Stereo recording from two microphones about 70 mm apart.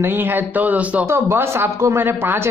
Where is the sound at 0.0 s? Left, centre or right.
Right.